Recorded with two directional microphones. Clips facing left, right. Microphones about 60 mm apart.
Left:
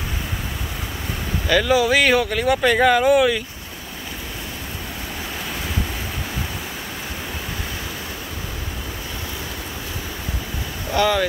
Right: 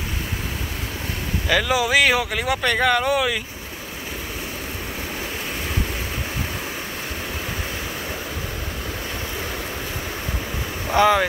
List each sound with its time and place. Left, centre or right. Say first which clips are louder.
1.5 s speech: left 2 dB; centre
10.9 s speech: right 2 dB; centre